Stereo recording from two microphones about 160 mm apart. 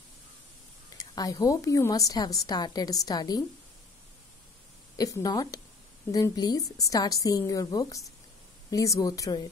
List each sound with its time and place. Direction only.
0.9 s a woman's voice: 20° left (ahead or behind)
4.9 s a woman's voice: 20° left (ahead or behind)